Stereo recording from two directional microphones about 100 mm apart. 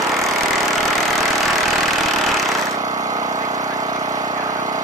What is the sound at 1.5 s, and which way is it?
Vehicle, centre (ahead or behind).